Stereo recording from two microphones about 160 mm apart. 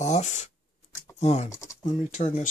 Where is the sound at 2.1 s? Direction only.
45° left (ahead or behind).